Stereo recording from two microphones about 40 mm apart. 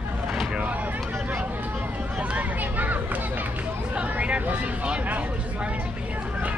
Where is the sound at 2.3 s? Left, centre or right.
Right.